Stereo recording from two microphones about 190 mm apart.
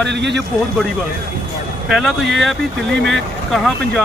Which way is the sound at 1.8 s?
Centre (ahead or behind).